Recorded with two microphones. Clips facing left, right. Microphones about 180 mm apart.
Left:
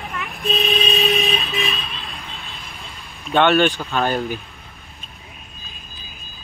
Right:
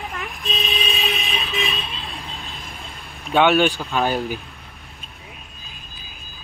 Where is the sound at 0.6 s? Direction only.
60° left (ahead or behind).